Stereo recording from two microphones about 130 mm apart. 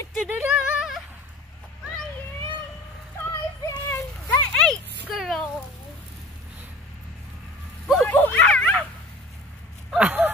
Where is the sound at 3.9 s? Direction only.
15° left (ahead or behind).